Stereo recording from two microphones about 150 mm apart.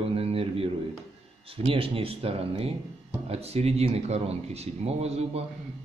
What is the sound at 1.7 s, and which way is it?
Speech, 40° right (ahead or behind).